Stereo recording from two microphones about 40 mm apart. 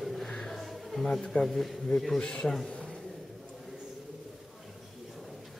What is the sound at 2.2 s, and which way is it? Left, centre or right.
Speech, left.